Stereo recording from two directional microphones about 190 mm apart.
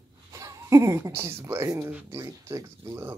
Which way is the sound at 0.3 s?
15° right (ahead or behind).